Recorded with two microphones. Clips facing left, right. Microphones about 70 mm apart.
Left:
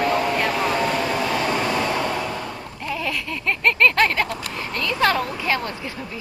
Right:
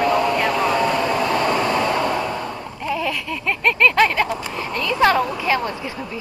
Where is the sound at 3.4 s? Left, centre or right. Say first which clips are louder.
Right 1 dB; centre.